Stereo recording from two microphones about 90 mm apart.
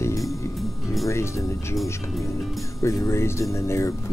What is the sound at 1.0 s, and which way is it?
Speech, 35° left (ahead or behind).